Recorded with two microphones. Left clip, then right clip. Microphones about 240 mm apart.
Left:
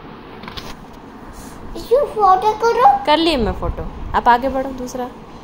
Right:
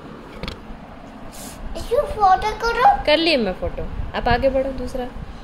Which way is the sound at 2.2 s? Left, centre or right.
Centre.